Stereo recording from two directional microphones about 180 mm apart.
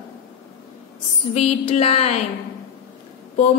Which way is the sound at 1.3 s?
35° left (ahead or behind).